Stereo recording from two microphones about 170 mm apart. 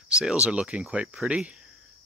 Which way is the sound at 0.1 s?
5° right (ahead or behind).